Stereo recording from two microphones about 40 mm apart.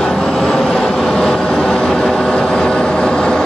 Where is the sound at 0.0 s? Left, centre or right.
Centre.